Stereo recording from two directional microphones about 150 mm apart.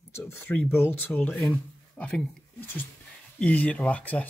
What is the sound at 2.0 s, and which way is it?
Speech, 5° left (ahead or behind).